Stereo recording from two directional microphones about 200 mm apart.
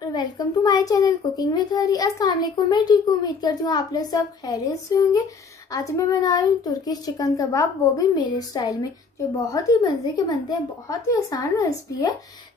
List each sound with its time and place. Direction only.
0.1 s a woman's voice: 20° left (ahead or behind)